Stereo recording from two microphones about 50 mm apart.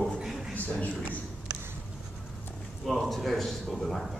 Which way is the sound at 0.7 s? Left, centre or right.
Left.